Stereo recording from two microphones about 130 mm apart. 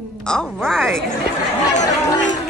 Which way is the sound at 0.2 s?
5° left (ahead or behind).